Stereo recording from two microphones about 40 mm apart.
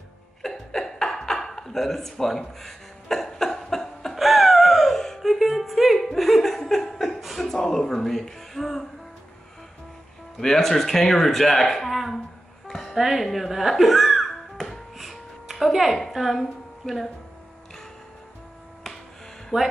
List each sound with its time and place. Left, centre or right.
0.4 s a sound: centre
4.2 s a sound: centre
4.9 s gasp: centre
5.2 s music: centre
5.9 s laughter: centre
7.2 s chuckle: centre
7.6 s speech: centre
10.3 s speech: centre
12.6 s music: centre
12.9 s a child's voice: centre
15.0 s music: centre
16.1 s a woman's voice: centre
19.5 s hum: centre